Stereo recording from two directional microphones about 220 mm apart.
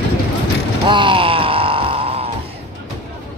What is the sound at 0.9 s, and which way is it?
Groan, 20° right (ahead or behind).